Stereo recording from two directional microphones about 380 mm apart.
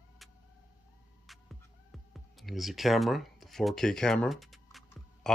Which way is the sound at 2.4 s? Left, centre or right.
Centre.